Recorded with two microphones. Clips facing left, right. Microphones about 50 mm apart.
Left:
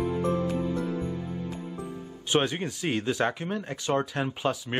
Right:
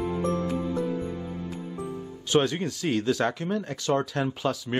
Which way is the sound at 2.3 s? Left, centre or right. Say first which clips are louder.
Right 2 dB; left.